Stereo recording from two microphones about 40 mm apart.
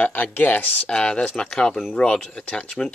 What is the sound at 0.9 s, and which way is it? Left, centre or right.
Speech, left.